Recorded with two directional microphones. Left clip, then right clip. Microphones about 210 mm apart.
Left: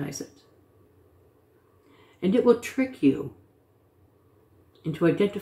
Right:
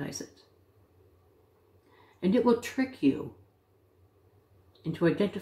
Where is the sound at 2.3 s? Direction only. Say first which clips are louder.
Left 5 dB; centre (ahead or behind).